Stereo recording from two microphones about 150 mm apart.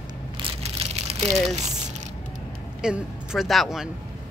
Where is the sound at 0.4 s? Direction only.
40° right (ahead or behind).